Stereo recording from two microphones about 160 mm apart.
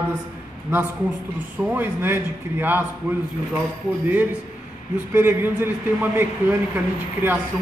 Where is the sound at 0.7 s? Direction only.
15° right (ahead or behind).